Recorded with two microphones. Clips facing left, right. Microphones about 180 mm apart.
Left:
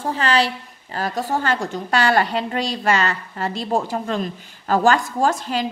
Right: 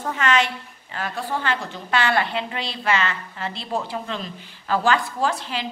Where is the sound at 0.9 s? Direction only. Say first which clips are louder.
Left 5 dB; 40° left (ahead or behind).